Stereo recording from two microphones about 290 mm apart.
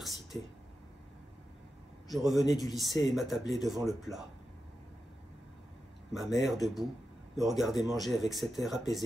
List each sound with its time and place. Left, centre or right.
0.3 s speech: centre
2.0 s speech: centre
6.1 s speech: centre